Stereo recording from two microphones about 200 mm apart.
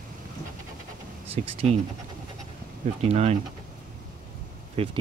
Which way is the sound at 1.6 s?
30° right (ahead or behind).